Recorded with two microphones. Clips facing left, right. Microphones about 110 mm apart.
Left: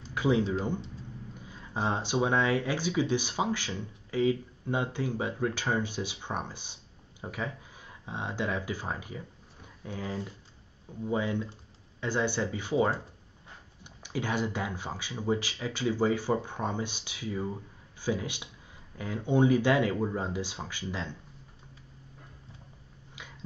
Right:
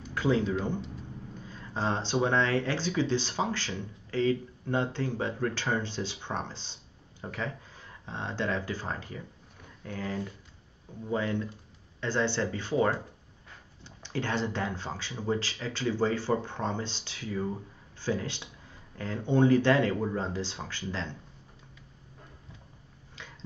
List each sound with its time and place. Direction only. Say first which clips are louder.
0.1 s speech: even; 15° left (ahead or behind)